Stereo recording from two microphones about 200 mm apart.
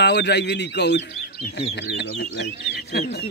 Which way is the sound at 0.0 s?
60° left (ahead or behind).